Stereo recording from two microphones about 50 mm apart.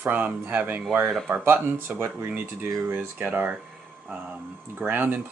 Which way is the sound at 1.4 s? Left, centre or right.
Right.